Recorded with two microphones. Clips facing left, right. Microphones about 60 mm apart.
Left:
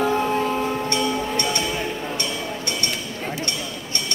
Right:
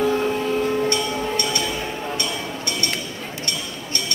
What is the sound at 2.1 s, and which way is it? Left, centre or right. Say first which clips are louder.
Vehicle: even; left.